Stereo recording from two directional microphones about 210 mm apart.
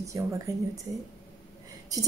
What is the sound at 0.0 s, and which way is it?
Speech, 15° right (ahead or behind).